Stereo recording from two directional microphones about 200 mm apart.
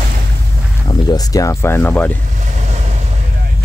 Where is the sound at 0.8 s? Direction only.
20° left (ahead or behind).